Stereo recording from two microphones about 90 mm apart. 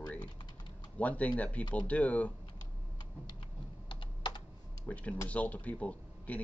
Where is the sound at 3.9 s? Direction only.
55° left (ahead or behind).